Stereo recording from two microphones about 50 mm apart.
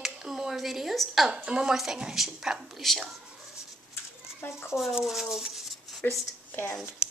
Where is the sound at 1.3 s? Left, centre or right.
Centre.